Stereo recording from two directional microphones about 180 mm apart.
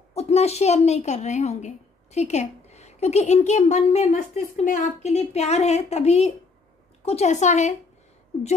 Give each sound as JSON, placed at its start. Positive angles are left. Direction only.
{"t": 0.1, "sound": "a woman's voice", "side_deg": 35}